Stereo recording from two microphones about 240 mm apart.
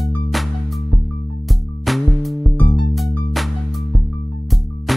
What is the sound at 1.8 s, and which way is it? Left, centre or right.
Music, centre.